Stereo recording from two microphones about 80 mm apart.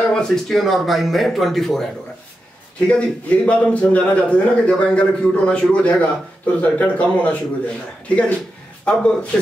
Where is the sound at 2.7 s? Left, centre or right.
Centre.